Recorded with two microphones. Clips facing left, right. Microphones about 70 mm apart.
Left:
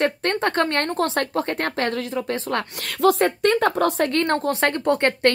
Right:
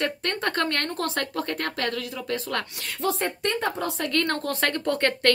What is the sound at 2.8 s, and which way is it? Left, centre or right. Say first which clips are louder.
Speech: left 12 dB; left.